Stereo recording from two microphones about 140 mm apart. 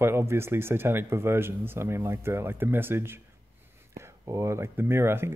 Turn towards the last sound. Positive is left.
turn(degrees=-15)  # may be behind; listen again after turning